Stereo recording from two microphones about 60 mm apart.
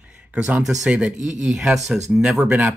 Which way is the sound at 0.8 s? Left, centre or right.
Centre.